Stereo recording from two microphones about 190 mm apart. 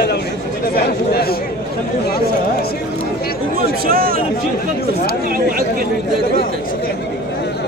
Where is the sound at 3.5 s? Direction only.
50° right (ahead or behind).